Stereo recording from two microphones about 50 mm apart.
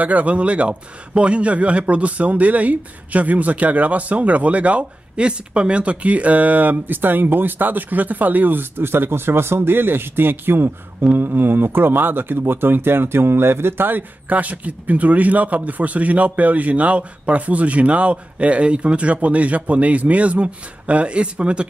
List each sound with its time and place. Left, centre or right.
0.0 s a man's voice: right